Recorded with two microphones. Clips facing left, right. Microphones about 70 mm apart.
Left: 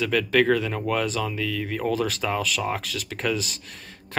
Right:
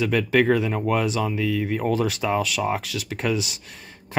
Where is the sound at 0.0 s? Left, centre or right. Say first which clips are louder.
Right 1 dB; centre.